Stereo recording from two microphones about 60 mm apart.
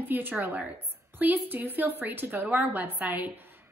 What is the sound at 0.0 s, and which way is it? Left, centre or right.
A woman's voice, right.